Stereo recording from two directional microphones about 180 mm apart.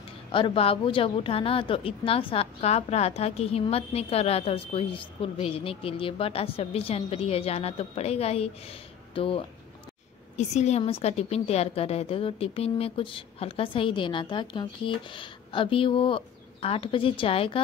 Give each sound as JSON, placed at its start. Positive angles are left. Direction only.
{"t": 0.3, "sound": "a woman's voice", "side_deg": 30}